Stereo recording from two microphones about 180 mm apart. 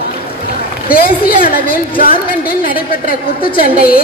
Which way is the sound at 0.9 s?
55° left (ahead or behind).